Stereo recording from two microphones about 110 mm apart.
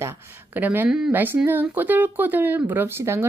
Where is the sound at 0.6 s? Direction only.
15° right (ahead or behind).